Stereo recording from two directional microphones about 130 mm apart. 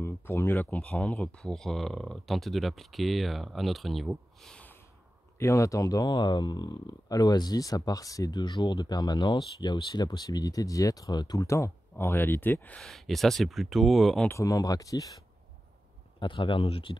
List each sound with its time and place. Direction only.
0.0 s speech: 20° left (ahead or behind)
5.4 s speech: 25° left (ahead or behind); by 14.2 s centre (ahead or behind)
14.2 s speech: 20° left (ahead or behind)
16.2 s speech: 40° left (ahead or behind)